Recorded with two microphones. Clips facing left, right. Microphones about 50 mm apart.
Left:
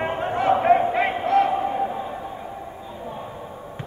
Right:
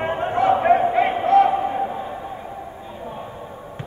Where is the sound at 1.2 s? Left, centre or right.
Right.